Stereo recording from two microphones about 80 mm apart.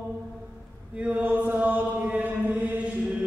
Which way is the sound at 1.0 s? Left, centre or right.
Centre.